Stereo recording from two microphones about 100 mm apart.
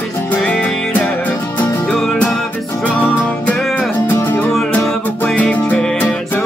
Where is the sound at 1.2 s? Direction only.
15° left (ahead or behind).